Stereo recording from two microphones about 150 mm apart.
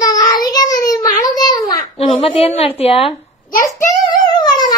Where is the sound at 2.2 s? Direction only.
45° left (ahead or behind).